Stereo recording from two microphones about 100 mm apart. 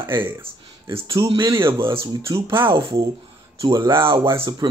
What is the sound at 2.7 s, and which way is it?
Speech, 55° right (ahead or behind).